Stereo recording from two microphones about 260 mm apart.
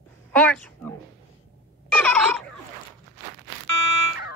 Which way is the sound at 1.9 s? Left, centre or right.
Centre.